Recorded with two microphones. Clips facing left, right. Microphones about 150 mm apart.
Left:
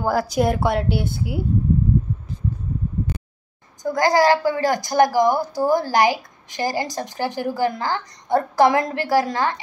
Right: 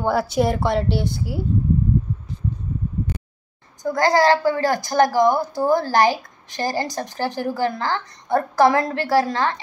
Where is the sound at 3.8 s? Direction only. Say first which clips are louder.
Even; 20° left (ahead or behind).